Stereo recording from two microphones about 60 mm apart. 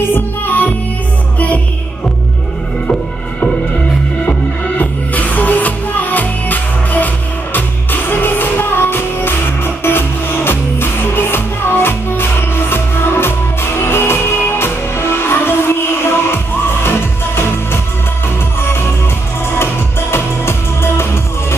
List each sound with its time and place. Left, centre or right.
0.0 s music: left
4.3 s music: left
18.6 s music: left